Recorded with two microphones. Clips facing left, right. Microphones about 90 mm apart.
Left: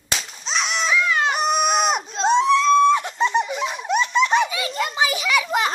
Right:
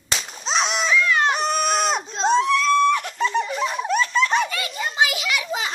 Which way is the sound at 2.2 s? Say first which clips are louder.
Left 2 dB; 20° left (ahead or behind).